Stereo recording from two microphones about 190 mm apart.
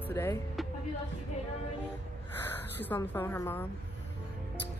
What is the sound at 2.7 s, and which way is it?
Speech, 10° left (ahead or behind).